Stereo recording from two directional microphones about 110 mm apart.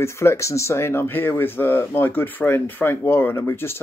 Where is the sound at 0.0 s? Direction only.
25° left (ahead or behind).